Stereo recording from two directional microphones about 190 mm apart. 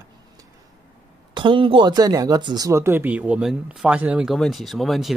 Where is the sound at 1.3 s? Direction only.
25° right (ahead or behind).